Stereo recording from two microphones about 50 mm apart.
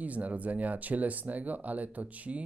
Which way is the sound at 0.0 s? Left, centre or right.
Right.